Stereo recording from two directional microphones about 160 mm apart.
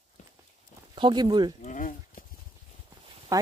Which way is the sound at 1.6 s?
55° left (ahead or behind).